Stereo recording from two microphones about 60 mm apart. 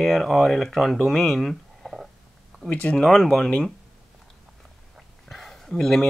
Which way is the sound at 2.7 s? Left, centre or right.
Left.